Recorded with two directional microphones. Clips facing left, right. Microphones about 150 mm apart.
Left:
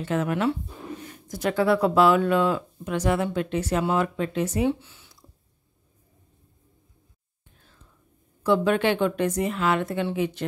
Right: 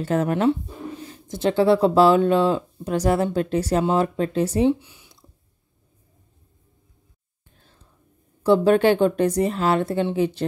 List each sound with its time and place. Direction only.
0.0 s a woman's voice: 40° right (ahead or behind)
1.0 s a woman's voice: 25° right (ahead or behind)
4.6 s a sound: 15° right (ahead or behind)
8.5 s a woman's voice: 35° right (ahead or behind)